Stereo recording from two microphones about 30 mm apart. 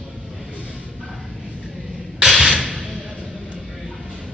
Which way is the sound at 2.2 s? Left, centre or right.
Centre.